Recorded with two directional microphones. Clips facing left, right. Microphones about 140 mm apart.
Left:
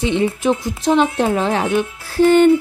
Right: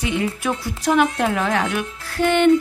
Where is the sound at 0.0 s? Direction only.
25° left (ahead or behind).